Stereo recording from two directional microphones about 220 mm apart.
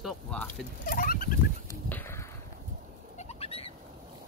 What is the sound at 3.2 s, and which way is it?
Bird, 30° left (ahead or behind).